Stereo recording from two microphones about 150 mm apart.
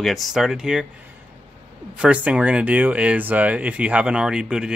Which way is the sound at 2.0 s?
10° right (ahead or behind).